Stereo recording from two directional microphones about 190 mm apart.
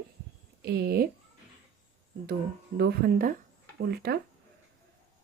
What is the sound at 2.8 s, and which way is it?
A woman's voice, 55° right (ahead or behind).